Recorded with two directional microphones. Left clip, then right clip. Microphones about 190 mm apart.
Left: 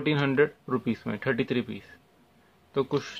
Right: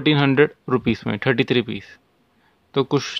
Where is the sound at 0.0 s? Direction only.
50° right (ahead or behind).